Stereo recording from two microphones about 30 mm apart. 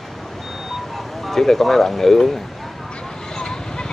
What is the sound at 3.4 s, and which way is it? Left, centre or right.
Vehicle, left.